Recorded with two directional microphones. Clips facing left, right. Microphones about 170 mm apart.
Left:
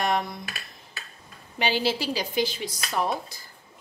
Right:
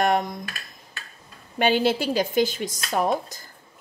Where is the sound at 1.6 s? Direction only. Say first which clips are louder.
Right 5 dB; 50° right (ahead or behind).